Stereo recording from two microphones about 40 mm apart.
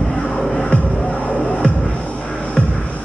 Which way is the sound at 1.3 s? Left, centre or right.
Left.